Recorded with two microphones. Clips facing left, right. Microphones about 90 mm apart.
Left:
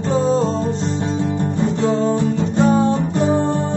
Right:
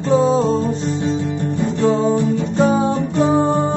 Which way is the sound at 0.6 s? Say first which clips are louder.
Right 1 dB; 40° left (ahead or behind).